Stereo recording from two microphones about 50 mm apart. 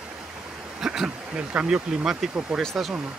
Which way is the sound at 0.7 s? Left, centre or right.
Centre.